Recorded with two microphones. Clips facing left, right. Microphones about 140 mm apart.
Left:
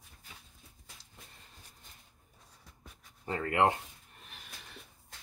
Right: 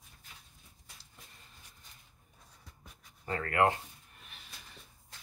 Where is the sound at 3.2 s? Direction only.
20° left (ahead or behind).